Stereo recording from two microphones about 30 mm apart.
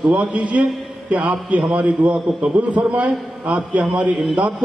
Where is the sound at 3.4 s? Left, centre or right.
Right.